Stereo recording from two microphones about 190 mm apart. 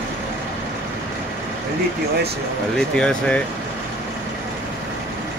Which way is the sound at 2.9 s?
5° left (ahead or behind).